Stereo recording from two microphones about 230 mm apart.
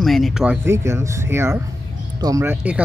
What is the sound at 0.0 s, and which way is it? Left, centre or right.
Speech, centre.